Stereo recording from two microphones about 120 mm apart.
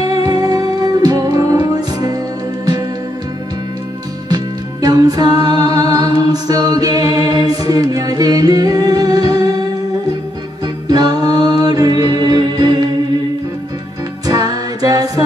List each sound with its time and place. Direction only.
0.0 s music: 30° right (ahead or behind)
4.8 s a capella: 30° right (ahead or behind)
10.6 s music: 30° right (ahead or behind)
14.2 s music: 30° right (ahead or behind)